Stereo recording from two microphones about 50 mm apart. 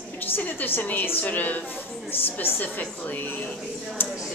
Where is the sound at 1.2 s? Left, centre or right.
Left.